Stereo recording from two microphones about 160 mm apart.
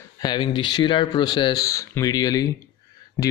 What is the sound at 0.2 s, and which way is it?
Speech, 30° left (ahead or behind).